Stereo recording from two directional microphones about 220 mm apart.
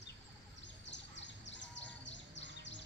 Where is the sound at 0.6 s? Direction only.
55° left (ahead or behind).